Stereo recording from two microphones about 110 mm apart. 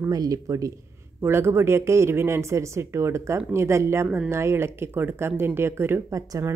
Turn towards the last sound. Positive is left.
turn(degrees=-30)  # may be behind; listen again after turning